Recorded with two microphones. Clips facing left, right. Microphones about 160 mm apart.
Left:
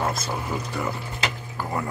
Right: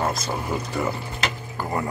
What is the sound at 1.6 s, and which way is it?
Speech, centre (ahead or behind).